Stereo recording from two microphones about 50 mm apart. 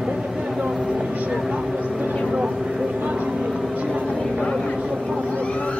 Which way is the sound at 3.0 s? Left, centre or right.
Right.